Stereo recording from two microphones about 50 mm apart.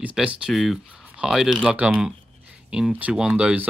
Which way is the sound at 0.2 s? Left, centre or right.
Centre.